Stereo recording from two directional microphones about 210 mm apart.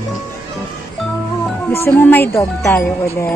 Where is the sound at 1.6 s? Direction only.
10° left (ahead or behind).